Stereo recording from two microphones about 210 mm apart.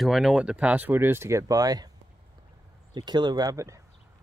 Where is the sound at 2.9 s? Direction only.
20° right (ahead or behind).